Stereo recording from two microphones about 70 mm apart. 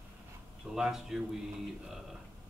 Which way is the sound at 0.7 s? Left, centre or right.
Centre.